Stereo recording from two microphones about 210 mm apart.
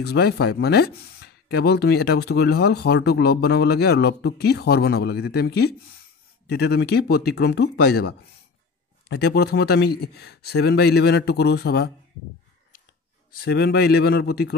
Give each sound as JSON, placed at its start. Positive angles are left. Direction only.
{"t": 0.0, "sound": "speech", "side_deg": 50}
{"t": 9.1, "sound": "speech", "side_deg": 50}
{"t": 13.4, "sound": "speech", "side_deg": 50}